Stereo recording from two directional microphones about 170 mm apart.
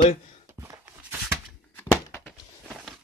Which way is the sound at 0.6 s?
15° right (ahead or behind).